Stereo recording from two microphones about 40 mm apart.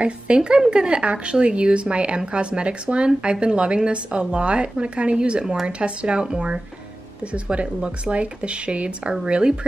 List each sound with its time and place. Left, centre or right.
0.0 s speech: right
7.5 s speech: right